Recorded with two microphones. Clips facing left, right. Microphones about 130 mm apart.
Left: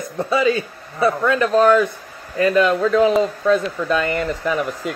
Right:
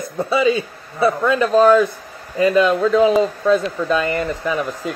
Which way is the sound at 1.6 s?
5° right (ahead or behind).